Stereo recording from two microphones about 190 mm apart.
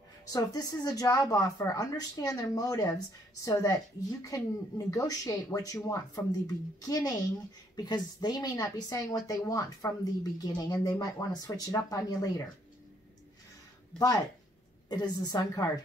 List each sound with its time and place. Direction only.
0.2 s speech: 20° left (ahead or behind)
13.9 s speech: 20° left (ahead or behind)